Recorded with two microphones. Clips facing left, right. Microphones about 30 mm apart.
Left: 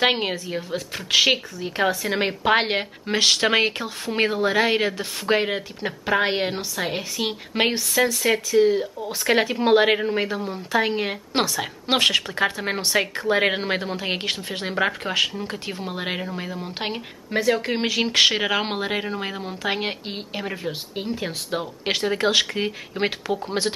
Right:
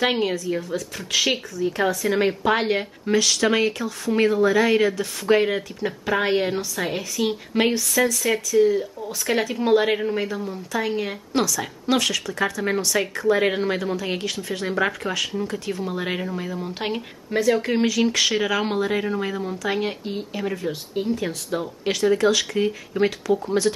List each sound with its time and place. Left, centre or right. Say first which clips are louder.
0.0 s a woman's voice: even; left